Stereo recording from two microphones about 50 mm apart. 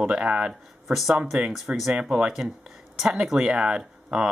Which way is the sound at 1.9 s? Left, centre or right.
Right.